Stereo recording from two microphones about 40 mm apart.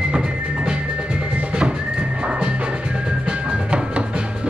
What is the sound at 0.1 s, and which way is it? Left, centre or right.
Music, right.